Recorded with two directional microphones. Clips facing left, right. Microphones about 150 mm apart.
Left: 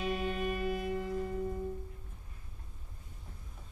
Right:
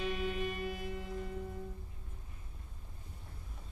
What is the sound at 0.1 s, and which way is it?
Music, 45° left (ahead or behind).